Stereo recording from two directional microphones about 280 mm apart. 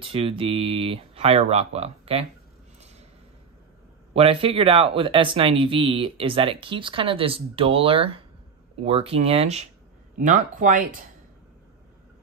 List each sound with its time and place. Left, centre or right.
0.0 s speech: centre
4.1 s speech: centre